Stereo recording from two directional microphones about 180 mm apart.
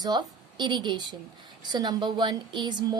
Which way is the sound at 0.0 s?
25° right (ahead or behind).